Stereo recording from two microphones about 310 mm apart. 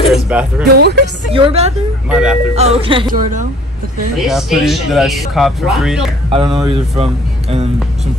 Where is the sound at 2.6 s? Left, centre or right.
Centre.